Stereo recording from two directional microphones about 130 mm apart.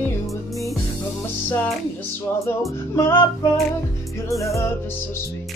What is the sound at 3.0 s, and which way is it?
Music, 15° left (ahead or behind).